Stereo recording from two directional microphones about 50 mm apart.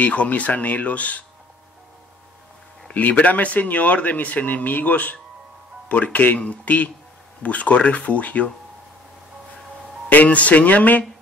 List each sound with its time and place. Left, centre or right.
0.0 s speech: left
2.9 s speech: left
10.0 s speech: left